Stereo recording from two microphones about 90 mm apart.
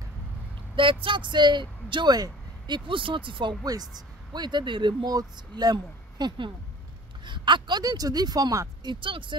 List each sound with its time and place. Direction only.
0.7 s speech: 70° right (ahead or behind)
3.6 s speech: 45° right (ahead or behind)
8.8 s speech: 70° right (ahead or behind)